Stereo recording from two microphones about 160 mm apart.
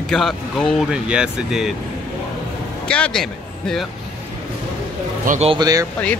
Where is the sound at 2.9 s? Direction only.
5° left (ahead or behind).